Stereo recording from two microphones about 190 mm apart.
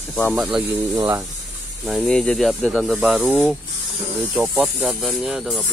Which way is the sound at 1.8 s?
Centre (ahead or behind).